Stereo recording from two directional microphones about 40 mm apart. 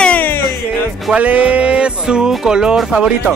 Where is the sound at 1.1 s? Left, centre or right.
Right; by 2.7 s centre.